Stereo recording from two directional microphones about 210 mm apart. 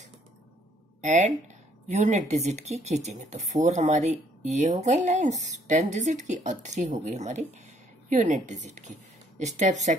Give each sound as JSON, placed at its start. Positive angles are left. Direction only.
{"t": 1.0, "sound": "speech", "side_deg": -35}